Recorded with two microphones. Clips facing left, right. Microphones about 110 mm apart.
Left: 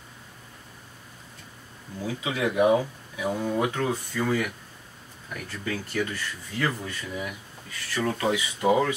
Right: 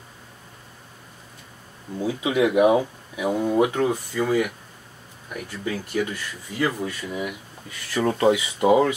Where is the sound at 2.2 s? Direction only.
15° right (ahead or behind).